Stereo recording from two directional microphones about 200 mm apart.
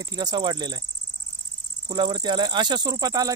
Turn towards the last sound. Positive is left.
turn(degrees=-20)  # may be behind; listen again after turning